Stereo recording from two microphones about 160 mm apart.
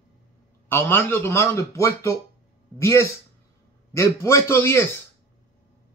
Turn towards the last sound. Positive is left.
turn(degrees=15)  # may be behind; listen again after turning